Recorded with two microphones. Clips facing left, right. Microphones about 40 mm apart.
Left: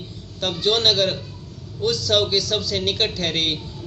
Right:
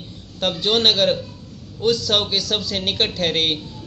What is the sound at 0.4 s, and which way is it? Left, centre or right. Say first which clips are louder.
A man's voice: right 1 dB; right.